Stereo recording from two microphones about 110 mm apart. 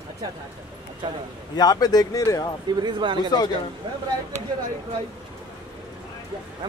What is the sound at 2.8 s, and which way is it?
Speech, 45° right (ahead or behind).